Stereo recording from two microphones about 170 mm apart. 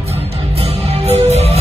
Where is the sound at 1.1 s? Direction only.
40° right (ahead or behind).